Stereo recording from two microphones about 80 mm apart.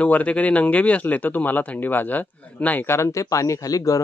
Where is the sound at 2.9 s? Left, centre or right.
Left.